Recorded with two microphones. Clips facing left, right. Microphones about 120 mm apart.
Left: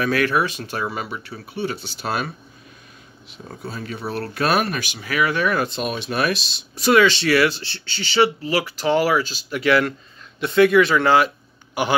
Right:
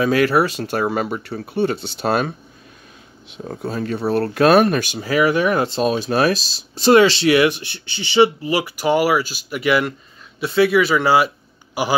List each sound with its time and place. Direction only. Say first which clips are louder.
0.0 s speech: right 4 dB; 25° right (ahead or behind)
0.7 s speech: right 6 dB; 50° right (ahead or behind)
3.4 s speech: right 7 dB; 45° right (ahead or behind)
5.0 s a man's voice: right 4 dB; 25° right (ahead or behind); by 11.9 s 10° right (ahead or behind)